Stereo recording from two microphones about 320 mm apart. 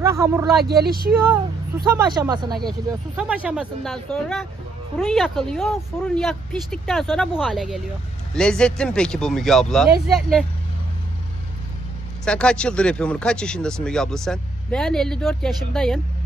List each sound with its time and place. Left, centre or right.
0.0 s speech: centre
0.7 s speech: right
1.9 s speech: centre
12.3 s speech: centre